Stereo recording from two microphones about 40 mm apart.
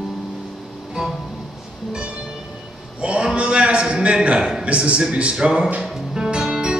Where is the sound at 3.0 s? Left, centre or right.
Right.